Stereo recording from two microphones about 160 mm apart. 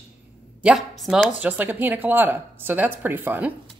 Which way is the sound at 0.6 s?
5° right (ahead or behind).